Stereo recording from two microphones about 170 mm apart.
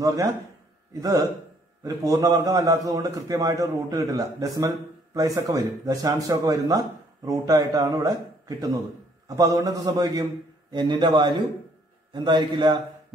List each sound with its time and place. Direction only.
0.0 s a man's voice: 20° right (ahead or behind)
1.8 s a man's voice: 20° right (ahead or behind)